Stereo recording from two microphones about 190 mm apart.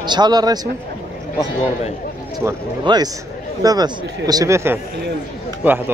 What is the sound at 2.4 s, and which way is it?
Speech, 20° right (ahead or behind).